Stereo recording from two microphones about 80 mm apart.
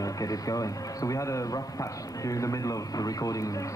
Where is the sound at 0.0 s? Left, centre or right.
Left.